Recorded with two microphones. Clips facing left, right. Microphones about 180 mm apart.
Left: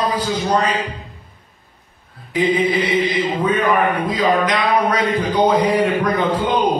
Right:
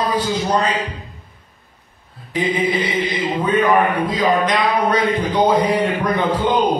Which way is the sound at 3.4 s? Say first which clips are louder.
Right 2 dB; 25° right (ahead or behind).